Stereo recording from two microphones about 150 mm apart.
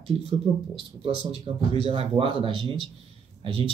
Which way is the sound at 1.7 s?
40° right (ahead or behind).